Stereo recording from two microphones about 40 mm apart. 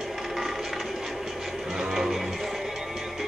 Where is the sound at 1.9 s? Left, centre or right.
Centre.